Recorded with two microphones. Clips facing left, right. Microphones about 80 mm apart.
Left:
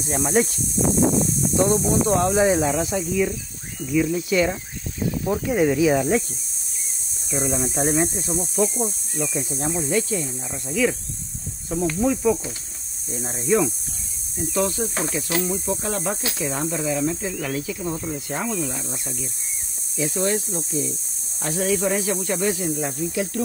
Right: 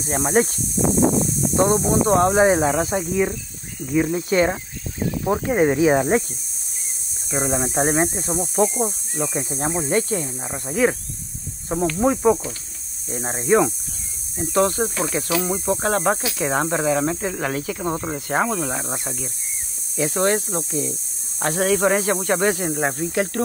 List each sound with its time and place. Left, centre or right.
0.0 s speech: right
0.8 s a sound: centre
1.5 s speech: right
7.2 s speech: right
12.0 s speech: right